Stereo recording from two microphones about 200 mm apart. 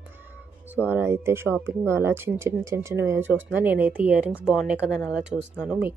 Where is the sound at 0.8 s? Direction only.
10° right (ahead or behind).